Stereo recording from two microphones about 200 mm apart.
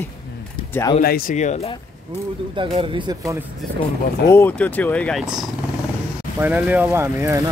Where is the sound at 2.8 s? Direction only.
20° right (ahead or behind).